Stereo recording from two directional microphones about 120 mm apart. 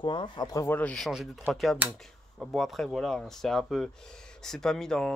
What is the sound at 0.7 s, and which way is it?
Speech, 10° left (ahead or behind).